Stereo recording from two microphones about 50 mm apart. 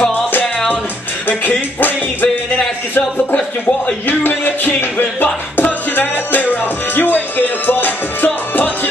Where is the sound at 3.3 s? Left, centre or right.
Left.